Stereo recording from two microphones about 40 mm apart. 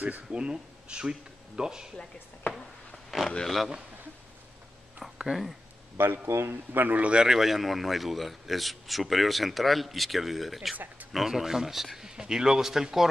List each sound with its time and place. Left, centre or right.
0.3 s a man's voice: right
3.1 s a man's voice: centre
5.2 s speech: centre
6.0 s a man's voice: right
7.0 s a man's voice: right
7.2 s a man's voice: centre
12.2 s a man's voice: centre